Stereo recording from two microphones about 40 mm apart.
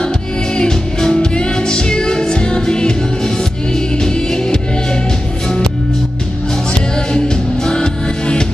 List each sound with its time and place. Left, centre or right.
0.6 s music: centre
7.1 s music: centre